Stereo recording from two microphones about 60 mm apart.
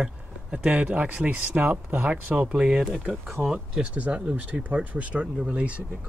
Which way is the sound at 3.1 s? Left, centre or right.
Centre.